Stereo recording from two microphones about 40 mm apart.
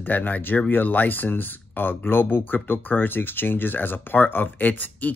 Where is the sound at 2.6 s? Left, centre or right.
Left.